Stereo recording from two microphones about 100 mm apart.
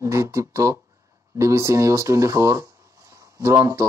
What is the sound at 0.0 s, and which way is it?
Speech, 30° right (ahead or behind).